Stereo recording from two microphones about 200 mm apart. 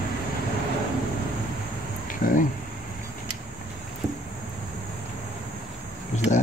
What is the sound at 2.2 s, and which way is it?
Speech, 45° left (ahead or behind).